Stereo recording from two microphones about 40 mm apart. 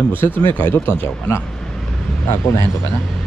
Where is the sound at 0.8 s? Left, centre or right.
Left.